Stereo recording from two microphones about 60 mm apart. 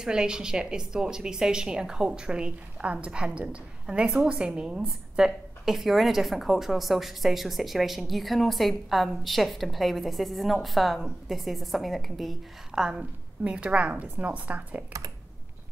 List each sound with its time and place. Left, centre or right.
0.0 s a woman's voice: centre
12.7 s a woman's voice: centre